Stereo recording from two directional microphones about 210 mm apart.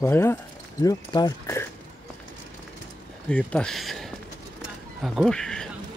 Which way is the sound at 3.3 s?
5° left (ahead or behind).